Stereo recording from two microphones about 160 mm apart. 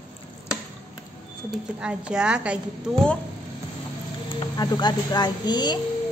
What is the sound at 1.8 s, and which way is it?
Speech, 5° right (ahead or behind).